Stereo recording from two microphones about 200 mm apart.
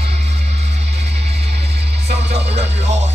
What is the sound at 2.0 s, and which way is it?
Music, 35° right (ahead or behind).